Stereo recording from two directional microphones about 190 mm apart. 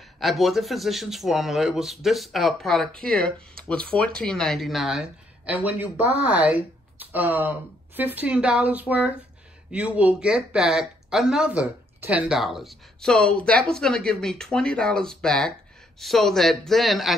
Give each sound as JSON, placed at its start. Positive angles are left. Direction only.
{"t": 0.2, "sound": "speech", "side_deg": 0}